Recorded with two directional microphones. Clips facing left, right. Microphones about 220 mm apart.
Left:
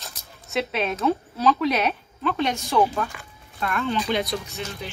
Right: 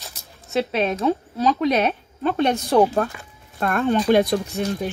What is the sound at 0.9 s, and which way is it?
Speech, 35° right (ahead or behind).